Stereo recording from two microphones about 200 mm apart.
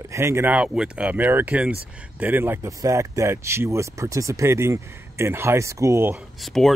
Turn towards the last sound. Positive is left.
turn(degrees=0)  # may be behind; listen again after turning